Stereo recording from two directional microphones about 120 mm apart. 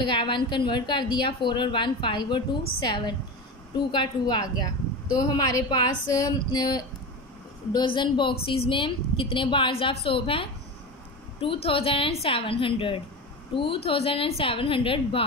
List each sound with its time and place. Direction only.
0.0 s a woman's voice: 40° left (ahead or behind)